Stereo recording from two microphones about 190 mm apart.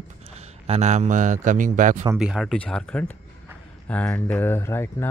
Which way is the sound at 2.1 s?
5° right (ahead or behind).